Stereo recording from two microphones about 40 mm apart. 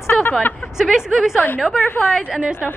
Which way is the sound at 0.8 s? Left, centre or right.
Centre.